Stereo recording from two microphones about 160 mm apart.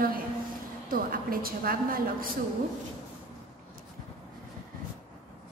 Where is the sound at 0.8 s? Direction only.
60° right (ahead or behind).